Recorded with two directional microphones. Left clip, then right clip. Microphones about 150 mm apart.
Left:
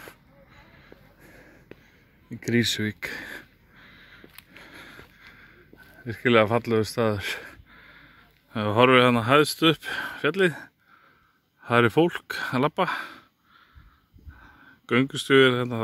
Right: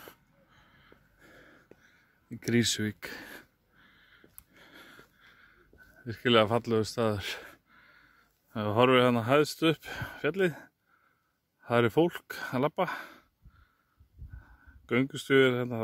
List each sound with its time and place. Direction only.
0.8 s a sound: 30° right (ahead or behind); by 5.5 s 10° right (ahead or behind)
6.0 s speech: 15° right (ahead or behind)
14.4 s speech: 5° right (ahead or behind)